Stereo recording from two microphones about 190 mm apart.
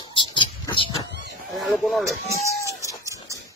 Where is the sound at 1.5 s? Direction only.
Centre (ahead or behind).